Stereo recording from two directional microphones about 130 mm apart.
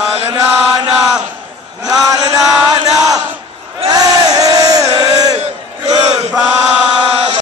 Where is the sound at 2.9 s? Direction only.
25° right (ahead or behind).